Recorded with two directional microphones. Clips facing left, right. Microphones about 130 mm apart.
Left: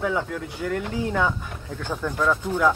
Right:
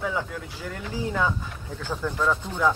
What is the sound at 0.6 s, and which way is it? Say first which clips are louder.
Speech: left 11 dB; 10° right (ahead or behind).